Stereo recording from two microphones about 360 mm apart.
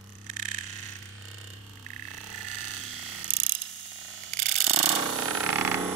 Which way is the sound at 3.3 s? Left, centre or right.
Right.